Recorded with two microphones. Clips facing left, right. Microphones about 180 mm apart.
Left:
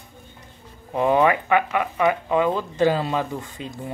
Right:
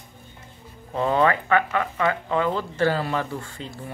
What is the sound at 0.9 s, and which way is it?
Speech, 15° left (ahead or behind).